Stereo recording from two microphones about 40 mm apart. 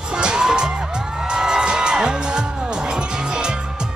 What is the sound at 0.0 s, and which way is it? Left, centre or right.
Music, right.